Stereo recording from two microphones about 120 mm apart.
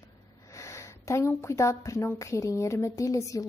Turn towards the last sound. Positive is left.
turn(degrees=30)  # may be behind; listen again after turning